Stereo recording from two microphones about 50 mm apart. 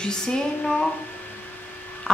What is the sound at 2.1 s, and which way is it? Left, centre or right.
Frog, left.